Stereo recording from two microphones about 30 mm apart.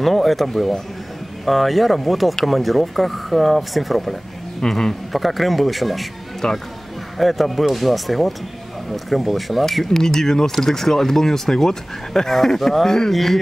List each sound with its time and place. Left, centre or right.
0.0 s speech: centre
4.6 s speech: centre
5.1 s speech: centre
6.4 s speech: centre
7.2 s speech: centre
9.8 s speech: centre
13.1 s speech: centre